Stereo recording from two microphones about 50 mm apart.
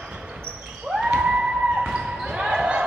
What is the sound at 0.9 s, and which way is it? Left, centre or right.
Basketball bounce, centre.